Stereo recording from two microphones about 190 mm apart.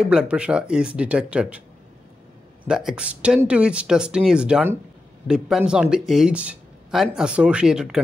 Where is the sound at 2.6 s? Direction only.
5° right (ahead or behind).